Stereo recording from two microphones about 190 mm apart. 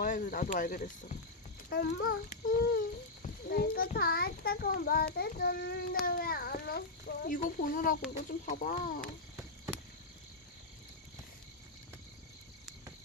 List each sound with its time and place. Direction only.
0.0 s a child's voice: 45° left (ahead or behind)
1.7 s a child's voice: 55° left (ahead or behind)